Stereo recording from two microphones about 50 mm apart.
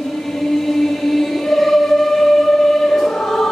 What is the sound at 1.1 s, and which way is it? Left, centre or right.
Choir, centre.